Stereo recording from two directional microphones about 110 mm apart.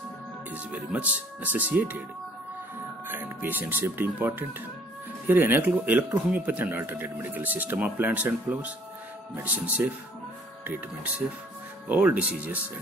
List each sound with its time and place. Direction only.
0.7 s speech: 15° right (ahead or behind)
3.1 s speech: 15° right (ahead or behind)
11.9 s speech: 15° right (ahead or behind)